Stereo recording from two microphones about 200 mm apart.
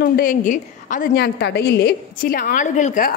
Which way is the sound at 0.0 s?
45° left (ahead or behind).